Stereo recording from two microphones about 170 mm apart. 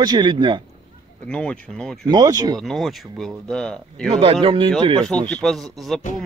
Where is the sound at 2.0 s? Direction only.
25° right (ahead or behind).